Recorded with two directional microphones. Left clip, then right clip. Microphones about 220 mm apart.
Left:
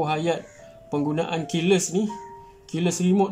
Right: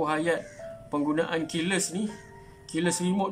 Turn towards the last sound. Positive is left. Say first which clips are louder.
# left 5 dB
turn(degrees=10)  # may be behind; listen again after turning